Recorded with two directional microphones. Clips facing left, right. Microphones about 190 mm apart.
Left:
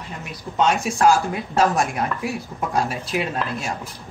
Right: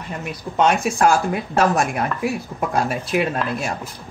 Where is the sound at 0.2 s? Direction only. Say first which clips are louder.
Right 2 dB; 55° right (ahead or behind).